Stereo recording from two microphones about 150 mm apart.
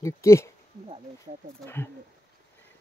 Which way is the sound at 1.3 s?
50° right (ahead or behind).